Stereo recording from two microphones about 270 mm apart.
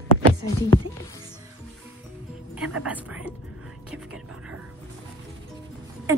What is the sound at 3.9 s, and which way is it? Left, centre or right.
Music, centre.